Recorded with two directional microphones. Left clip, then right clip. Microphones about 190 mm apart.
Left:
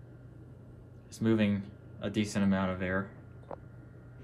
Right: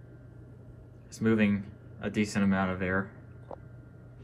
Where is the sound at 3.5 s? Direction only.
30° right (ahead or behind).